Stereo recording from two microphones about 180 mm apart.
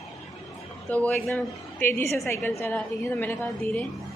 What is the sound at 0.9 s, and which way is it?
A woman's voice, 10° left (ahead or behind).